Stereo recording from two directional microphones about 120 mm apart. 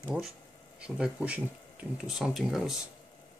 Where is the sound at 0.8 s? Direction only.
10° right (ahead or behind).